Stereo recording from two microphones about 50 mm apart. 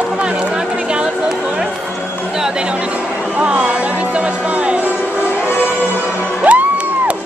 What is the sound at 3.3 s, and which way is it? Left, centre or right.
Music, right.